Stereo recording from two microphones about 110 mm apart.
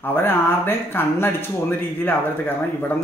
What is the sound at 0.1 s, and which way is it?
Speech, 20° left (ahead or behind).